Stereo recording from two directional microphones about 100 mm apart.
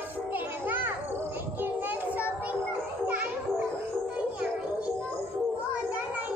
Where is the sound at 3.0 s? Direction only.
15° right (ahead or behind).